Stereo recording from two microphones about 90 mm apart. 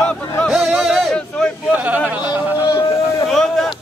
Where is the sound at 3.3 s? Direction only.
Centre (ahead or behind).